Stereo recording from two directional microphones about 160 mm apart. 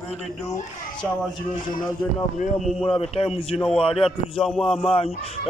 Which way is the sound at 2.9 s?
35° left (ahead or behind).